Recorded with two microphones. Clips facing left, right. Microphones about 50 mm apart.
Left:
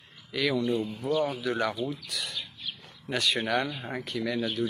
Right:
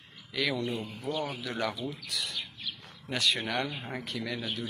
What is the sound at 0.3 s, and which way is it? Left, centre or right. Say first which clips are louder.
Speech: left 4 dB; centre.